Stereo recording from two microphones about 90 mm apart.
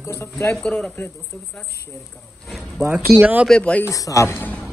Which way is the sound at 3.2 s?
20° right (ahead or behind).